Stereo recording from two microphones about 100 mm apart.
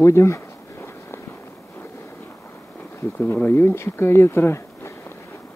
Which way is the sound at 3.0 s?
20° left (ahead or behind).